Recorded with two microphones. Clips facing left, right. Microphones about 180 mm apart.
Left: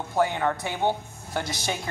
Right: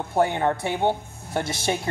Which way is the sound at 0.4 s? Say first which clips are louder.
Right 3 dB; 25° right (ahead or behind).